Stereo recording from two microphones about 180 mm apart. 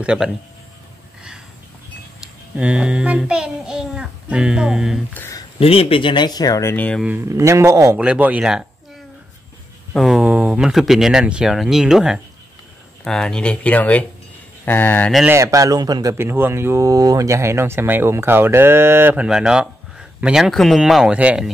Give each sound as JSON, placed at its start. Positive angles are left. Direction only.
{"t": 0.0, "sound": "child singing", "side_deg": -5}
{"t": 2.5, "sound": "child singing", "side_deg": -5}
{"t": 5.1, "sound": "speech", "side_deg": 10}
{"t": 5.6, "sound": "speech", "side_deg": 30}
{"t": 7.0, "sound": "speech", "side_deg": -10}
{"t": 9.9, "sound": "child singing", "side_deg": 0}
{"t": 14.6, "sound": "speech", "side_deg": 10}
{"t": 15.3, "sound": "speech", "side_deg": -20}